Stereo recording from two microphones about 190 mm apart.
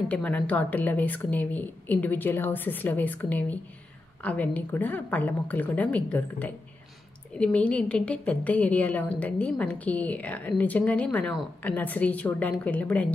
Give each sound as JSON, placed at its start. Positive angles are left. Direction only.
{"t": 0.1, "sound": "a woman's voice", "side_deg": 5}